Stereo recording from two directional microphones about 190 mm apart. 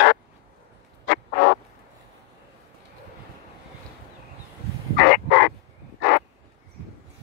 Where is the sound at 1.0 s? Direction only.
60° left (ahead or behind).